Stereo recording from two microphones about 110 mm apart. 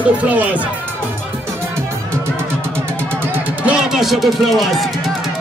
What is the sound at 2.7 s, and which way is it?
Music, 20° right (ahead or behind).